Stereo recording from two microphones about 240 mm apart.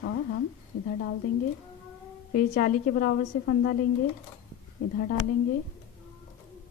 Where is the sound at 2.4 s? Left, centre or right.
Left.